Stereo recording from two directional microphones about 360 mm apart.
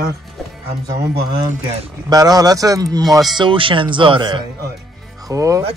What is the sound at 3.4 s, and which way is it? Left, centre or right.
Speech, centre.